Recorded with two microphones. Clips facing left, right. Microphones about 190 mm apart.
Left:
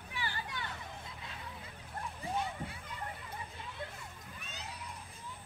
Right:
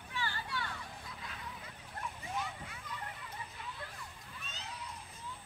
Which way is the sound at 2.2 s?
30° left (ahead or behind).